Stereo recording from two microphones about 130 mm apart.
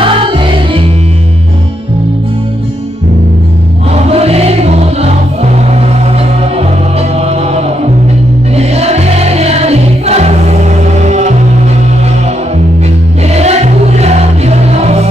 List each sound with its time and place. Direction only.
0.0 s music: 40° right (ahead or behind)
3.9 s music: 50° right (ahead or behind)
7.2 s music: 55° right (ahead or behind)
13.3 s music: 55° right (ahead or behind)